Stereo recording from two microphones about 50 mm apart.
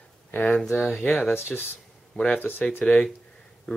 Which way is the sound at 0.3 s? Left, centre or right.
Left.